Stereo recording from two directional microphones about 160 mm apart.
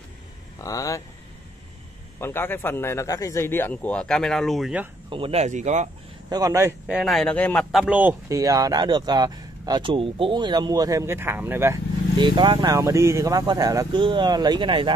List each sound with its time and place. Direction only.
0.6 s speech: 20° left (ahead or behind)
2.1 s a man's voice: 15° left (ahead or behind); by 4.8 s centre (ahead or behind)
5.1 s speech: 40° right (ahead or behind)
6.3 s speech: 20° right (ahead or behind)
6.9 s speech: centre (ahead or behind)
7.8 s speech: 10° right (ahead or behind)
12.2 s speech: 30° right (ahead or behind)